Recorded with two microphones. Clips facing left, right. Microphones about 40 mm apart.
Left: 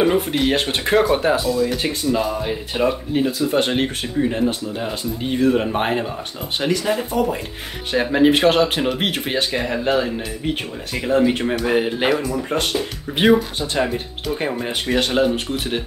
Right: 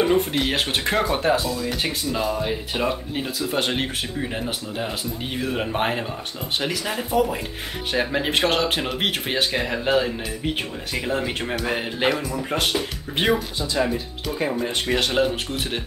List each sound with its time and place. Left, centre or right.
0.0 s speech: centre
13.8 s speech: left
14.9 s speech: centre